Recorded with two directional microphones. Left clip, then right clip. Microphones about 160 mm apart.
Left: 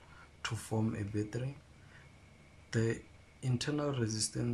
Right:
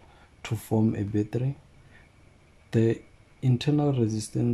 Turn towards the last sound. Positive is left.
turn(degrees=-20)  # may be behind; listen again after turning